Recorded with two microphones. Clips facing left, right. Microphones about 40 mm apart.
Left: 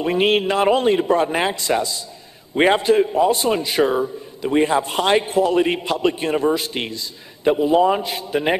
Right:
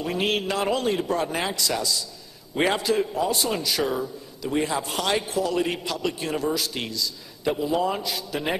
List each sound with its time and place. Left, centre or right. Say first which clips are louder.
0.0 s a man's voice: left 8 dB; left